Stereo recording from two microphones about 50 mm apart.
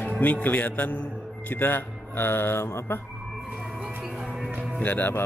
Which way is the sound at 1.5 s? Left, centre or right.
Left.